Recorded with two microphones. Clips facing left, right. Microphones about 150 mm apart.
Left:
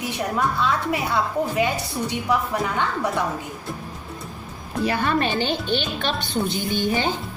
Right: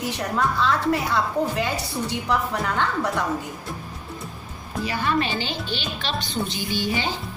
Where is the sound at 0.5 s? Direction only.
10° left (ahead or behind).